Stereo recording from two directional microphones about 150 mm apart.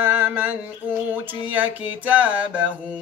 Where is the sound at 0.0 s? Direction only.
15° right (ahead or behind).